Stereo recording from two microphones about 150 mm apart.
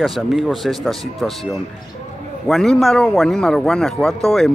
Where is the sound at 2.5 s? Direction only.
Centre (ahead or behind).